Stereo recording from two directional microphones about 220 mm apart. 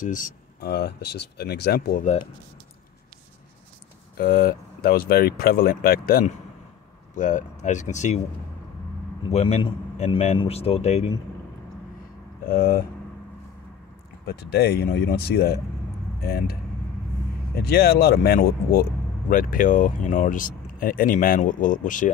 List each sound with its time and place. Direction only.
0.0 s speech: 35° left (ahead or behind)
4.2 s speech: 40° left (ahead or behind)
9.3 s speech: 30° left (ahead or behind)
12.4 s speech: 40° left (ahead or behind)
14.2 s speech: 45° left (ahead or behind)
17.6 s speech: 45° left (ahead or behind)